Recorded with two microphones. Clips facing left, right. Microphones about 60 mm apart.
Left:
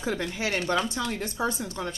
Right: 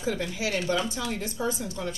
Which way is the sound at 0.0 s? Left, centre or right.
Left.